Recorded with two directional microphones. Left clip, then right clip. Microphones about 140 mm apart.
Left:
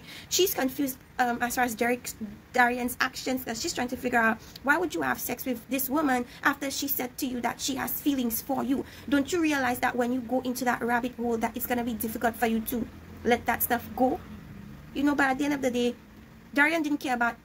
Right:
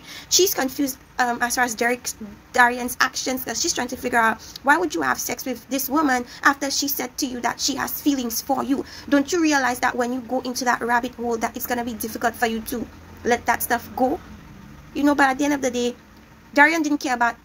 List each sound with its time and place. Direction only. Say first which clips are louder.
0.1 s a woman's voice: right 7 dB; 15° left (ahead or behind)